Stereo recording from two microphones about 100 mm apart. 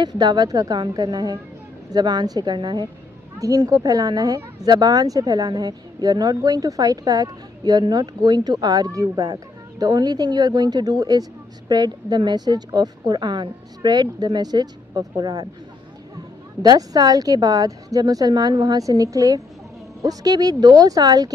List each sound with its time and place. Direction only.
0.0 s a woman's voice: 45° right (ahead or behind)
3.3 s a woman's voice: 35° right (ahead or behind)
16.6 s speech: 40° right (ahead or behind)